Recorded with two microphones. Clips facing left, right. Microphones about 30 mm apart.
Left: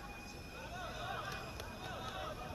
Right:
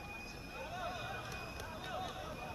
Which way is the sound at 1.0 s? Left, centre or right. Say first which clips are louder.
Left 2 dB; centre.